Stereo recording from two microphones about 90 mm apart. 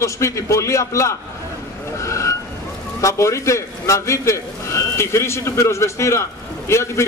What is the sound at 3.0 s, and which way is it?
A man's voice, 35° left (ahead or behind).